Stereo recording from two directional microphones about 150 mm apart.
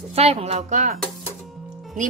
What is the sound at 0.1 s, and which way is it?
Speech, 40° right (ahead or behind).